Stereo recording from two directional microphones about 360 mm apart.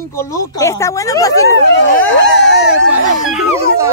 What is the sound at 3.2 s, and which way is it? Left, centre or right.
Speech, centre.